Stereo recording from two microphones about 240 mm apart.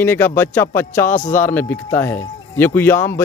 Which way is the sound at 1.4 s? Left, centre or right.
Centre.